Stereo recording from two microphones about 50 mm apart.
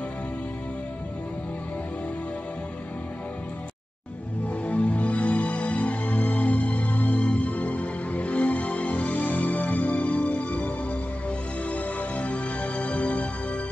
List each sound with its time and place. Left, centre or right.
4.5 s music: left